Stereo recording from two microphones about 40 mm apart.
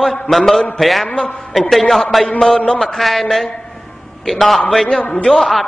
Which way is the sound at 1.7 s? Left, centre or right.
Centre.